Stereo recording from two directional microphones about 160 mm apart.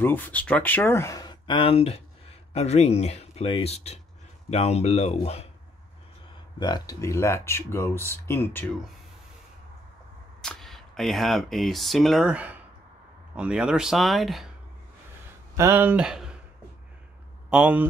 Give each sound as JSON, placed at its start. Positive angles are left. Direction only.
{"t": 0.0, "sound": "speech", "side_deg": 10}
{"t": 6.6, "sound": "speech", "side_deg": 25}
{"t": 10.4, "sound": "speech", "side_deg": 0}
{"t": 15.5, "sound": "speech", "side_deg": -15}
{"t": 17.5, "sound": "speech", "side_deg": -10}